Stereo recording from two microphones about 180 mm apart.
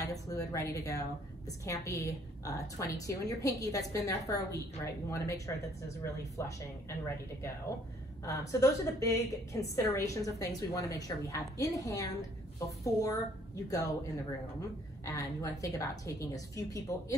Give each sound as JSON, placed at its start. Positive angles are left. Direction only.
{"t": 0.0, "sound": "a woman's voice", "side_deg": 20}
{"t": 8.3, "sound": "a woman's voice", "side_deg": 15}
{"t": 15.0, "sound": "a woman's voice", "side_deg": 20}